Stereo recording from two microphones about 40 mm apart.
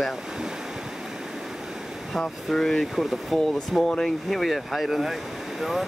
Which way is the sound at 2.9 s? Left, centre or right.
Centre.